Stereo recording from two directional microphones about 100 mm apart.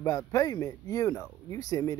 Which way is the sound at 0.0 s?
30° left (ahead or behind).